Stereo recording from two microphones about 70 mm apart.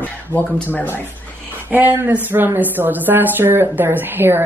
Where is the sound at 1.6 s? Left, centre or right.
Right.